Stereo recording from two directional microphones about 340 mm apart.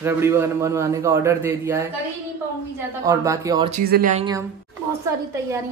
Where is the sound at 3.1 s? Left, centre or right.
Centre.